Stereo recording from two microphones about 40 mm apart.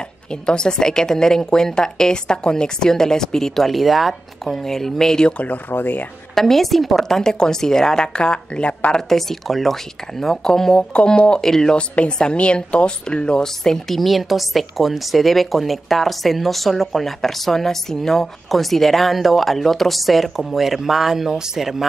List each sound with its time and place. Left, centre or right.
0.3 s a woman's voice: left
5.7 s speech: left
6.3 s speech: centre
7.2 s a woman's voice: centre
8.9 s a woman's voice: centre
10.8 s a woman's voice: left
12.2 s speech: left; by 21.8 s centre